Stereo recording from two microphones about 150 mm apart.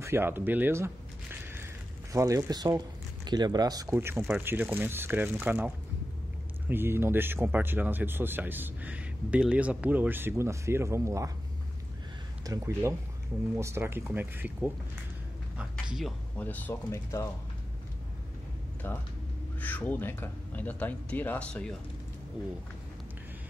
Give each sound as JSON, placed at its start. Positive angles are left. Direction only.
{"t": 0.0, "sound": "a sound", "side_deg": -15}
{"t": 2.1, "sound": "speech", "side_deg": -20}
{"t": 6.7, "sound": "speech", "side_deg": -15}
{"t": 12.4, "sound": "speech", "side_deg": -20}
{"t": 15.5, "sound": "a sound", "side_deg": -5}
{"t": 16.3, "sound": "speech", "side_deg": 10}
{"t": 18.8, "sound": "speech", "side_deg": 15}